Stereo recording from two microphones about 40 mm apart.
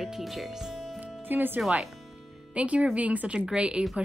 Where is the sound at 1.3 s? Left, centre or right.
Right.